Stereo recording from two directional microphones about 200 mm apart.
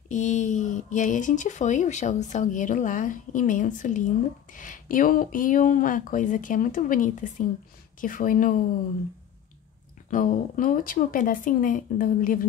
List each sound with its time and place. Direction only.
0.1 s speech: 40° left (ahead or behind)
10.0 s speech: 40° left (ahead or behind)